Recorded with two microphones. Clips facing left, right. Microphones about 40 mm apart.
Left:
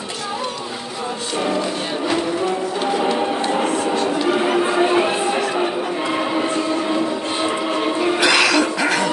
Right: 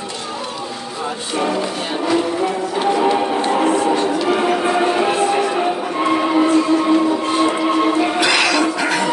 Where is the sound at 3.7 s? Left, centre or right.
Right.